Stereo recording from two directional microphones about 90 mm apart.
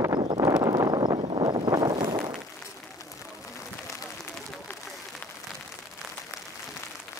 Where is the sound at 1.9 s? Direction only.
65° right (ahead or behind).